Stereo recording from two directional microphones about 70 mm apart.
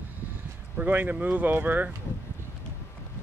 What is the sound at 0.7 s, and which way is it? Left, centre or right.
Speech, right.